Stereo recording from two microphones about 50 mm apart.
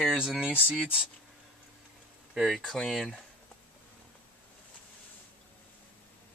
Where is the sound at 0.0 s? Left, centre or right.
Centre.